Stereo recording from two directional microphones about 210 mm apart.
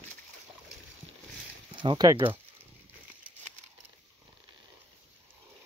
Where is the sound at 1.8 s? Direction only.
20° right (ahead or behind).